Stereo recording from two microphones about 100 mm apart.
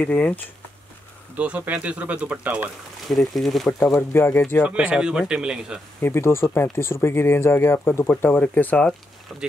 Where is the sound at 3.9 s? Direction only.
25° left (ahead or behind).